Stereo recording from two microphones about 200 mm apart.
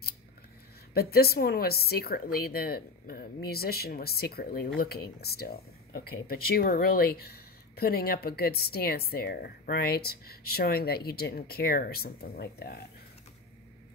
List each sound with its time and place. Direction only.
0.9 s speech: 50° left (ahead or behind)